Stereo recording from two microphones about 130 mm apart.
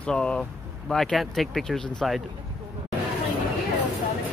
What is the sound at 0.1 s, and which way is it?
Speech, 5° left (ahead or behind).